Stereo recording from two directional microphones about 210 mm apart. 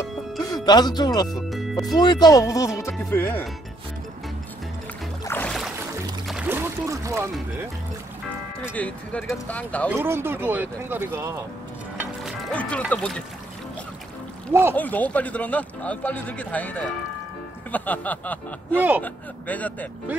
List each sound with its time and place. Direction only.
0.7 s speech: 20° left (ahead or behind)
1.3 s speech: centre (ahead or behind)
2.0 s a man's voice: 20° left (ahead or behind)
5.2 s music: 10° left (ahead or behind); by 7.2 s 15° right (ahead or behind)
8.7 s a man's voice: 5° left (ahead or behind)
9.8 s speech: 10° right (ahead or behind)
12.2 s music: centre (ahead or behind)
12.9 s speech: 5° left (ahead or behind)
14.5 s speech: 10° right (ahead or behind)
14.8 s a man's voice: 10° left (ahead or behind)
18.8 s speech: 10° right (ahead or behind)
19.0 s a man's voice: 5° left (ahead or behind)